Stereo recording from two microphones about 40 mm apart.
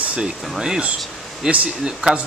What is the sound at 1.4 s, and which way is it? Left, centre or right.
Speech, right.